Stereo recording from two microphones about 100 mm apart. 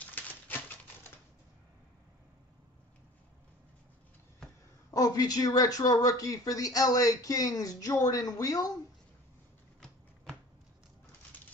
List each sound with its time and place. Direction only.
0.0 s typewriter: 20° left (ahead or behind)
4.9 s speech: 40° left (ahead or behind)